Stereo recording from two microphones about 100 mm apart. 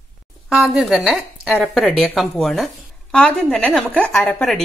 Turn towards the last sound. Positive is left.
turn(degrees=10)  # may be behind; listen again after turning